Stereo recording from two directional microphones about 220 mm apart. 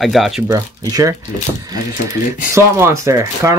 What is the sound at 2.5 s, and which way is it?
Speech, 10° right (ahead or behind).